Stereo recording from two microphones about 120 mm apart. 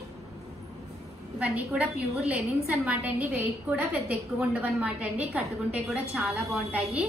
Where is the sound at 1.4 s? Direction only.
10° right (ahead or behind).